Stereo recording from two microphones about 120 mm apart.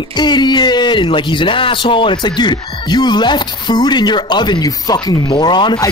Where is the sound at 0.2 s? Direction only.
35° left (ahead or behind).